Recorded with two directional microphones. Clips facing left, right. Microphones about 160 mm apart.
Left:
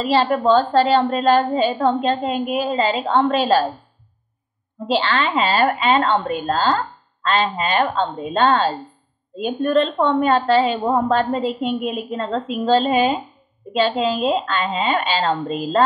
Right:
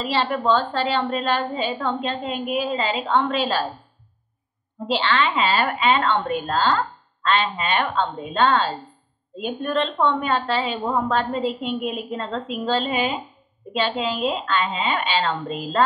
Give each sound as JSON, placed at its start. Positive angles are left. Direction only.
{"t": 0.0, "sound": "a woman's voice", "side_deg": 40}
{"t": 4.8, "sound": "a woman's voice", "side_deg": 45}